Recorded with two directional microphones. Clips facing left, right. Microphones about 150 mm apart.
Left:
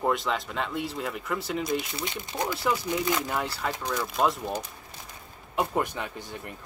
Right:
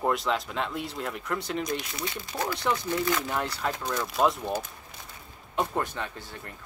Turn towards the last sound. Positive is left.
turn(degrees=15)  # may be behind; listen again after turning